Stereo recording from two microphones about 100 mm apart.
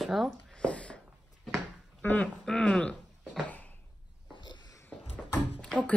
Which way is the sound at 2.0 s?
15° left (ahead or behind).